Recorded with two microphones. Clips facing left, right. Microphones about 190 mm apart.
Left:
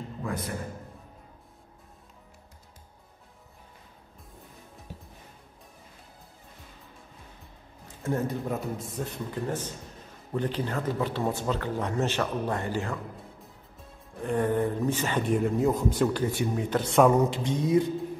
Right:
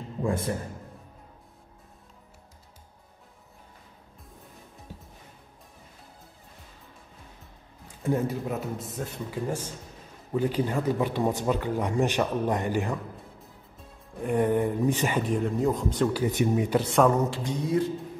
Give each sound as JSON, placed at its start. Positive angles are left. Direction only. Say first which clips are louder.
{"t": 0.2, "sound": "a man's voice", "louder": "right 6 dB", "side_deg": -30}
{"t": 8.0, "sound": "speech", "louder": "right 2 dB", "side_deg": -10}
{"t": 14.2, "sound": "speech", "louder": "right 2 dB", "side_deg": -15}
{"t": 15.1, "sound": "speech", "louder": "left 1 dB", "side_deg": 0}
{"t": 16.1, "sound": "speech", "louder": "right 3 dB", "side_deg": -15}
{"t": 17.3, "sound": "speech", "louder": "left 3 dB", "side_deg": 20}